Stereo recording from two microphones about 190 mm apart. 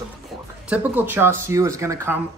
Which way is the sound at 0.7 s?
10° right (ahead or behind).